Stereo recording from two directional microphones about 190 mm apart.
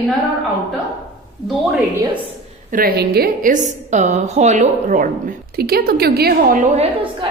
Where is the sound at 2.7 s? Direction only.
50° right (ahead or behind).